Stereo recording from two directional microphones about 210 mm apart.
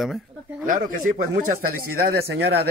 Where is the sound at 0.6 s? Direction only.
40° right (ahead or behind).